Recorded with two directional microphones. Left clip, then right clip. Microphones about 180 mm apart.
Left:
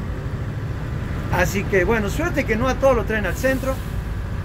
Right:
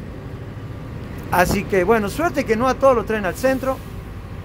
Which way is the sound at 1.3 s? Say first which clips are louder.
Right 3 dB; 30° right (ahead or behind).